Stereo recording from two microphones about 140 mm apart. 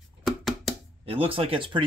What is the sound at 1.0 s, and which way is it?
Speech, 40° right (ahead or behind).